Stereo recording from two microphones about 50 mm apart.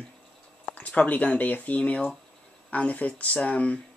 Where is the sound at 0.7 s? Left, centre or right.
Left.